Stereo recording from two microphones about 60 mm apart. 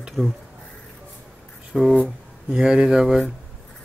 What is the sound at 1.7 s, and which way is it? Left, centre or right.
Speech, centre.